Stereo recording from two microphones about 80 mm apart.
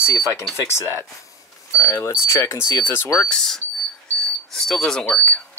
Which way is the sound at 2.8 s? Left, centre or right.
Left.